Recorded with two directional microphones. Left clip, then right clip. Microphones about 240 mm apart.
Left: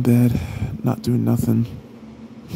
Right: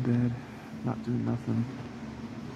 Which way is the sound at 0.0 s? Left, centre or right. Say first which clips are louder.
Left 12 dB; left.